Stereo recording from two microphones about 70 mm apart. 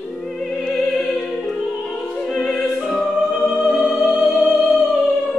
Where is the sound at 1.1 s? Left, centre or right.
Centre.